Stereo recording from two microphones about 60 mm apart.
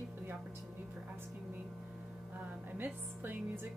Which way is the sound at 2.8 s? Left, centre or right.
Right.